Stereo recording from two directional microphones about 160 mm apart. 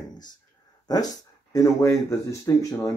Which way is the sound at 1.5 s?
20° left (ahead or behind).